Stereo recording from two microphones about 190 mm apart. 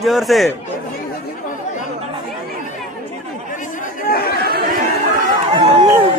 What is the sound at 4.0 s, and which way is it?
Chatter, 55° left (ahead or behind).